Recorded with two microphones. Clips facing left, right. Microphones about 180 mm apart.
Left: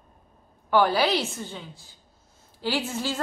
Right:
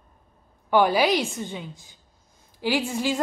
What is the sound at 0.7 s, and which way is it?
A woman's voice, 15° right (ahead or behind).